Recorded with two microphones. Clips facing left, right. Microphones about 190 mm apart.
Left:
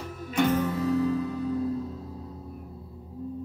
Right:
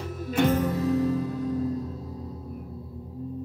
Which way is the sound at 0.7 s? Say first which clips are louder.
Right 1 dB; 35° right (ahead or behind).